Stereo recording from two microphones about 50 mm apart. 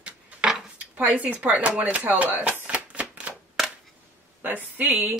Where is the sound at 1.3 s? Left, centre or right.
Right.